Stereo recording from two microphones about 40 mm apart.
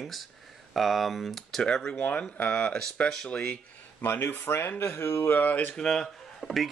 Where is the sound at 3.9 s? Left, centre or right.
Left.